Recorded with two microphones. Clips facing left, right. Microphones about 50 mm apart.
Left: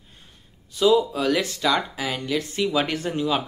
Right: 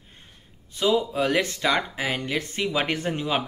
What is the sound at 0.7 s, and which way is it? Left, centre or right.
Speech, right.